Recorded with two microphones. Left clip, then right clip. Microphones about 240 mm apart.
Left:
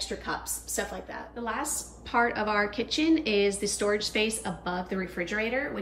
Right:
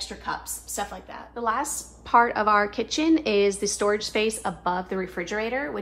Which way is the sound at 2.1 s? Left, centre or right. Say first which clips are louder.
Right 7 dB; right.